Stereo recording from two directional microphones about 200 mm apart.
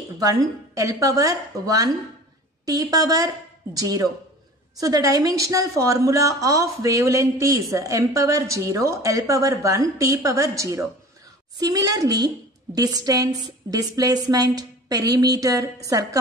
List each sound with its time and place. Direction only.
0.2 s a woman's voice: 15° right (ahead or behind)